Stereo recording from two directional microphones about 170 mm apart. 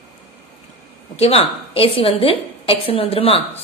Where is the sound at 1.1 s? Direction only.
35° left (ahead or behind).